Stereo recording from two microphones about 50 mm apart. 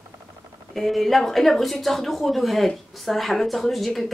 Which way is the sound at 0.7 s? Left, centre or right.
Centre.